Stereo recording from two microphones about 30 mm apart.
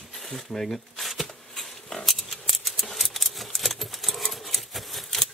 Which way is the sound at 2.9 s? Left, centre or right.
Centre.